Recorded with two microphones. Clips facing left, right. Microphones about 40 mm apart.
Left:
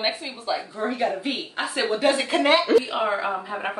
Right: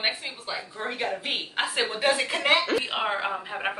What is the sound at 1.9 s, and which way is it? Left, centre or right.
Speech, centre.